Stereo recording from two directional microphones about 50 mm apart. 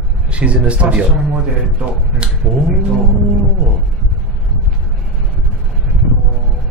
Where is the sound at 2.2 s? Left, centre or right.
Right.